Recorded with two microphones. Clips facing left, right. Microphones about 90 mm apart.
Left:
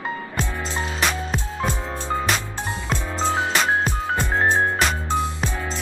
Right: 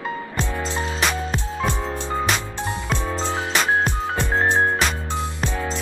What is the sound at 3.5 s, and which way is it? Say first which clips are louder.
Music: right 1 dB; 5° left (ahead or behind).